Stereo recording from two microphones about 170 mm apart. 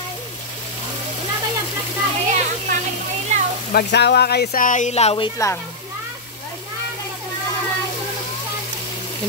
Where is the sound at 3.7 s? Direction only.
80° left; by 5.3 s 35° left (ahead or behind).